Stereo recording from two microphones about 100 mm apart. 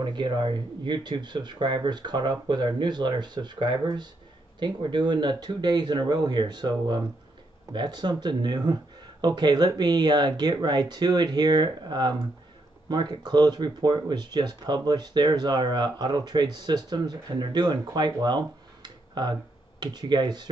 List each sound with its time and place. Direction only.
0.0 s speech: 50° right (ahead or behind)